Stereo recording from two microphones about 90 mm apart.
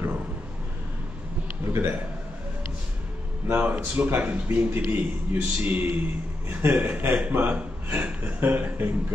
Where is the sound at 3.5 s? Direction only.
20° right (ahead or behind).